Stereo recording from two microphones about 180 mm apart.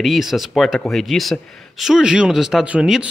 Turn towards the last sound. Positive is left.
turn(degrees=-5)  # may be behind; listen again after turning